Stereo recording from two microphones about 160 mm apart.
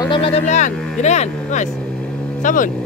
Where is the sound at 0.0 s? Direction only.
35° left (ahead or behind); by 2.7 s 55° left (ahead or behind).